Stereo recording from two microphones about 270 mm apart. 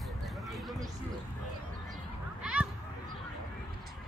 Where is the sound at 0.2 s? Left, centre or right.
Centre.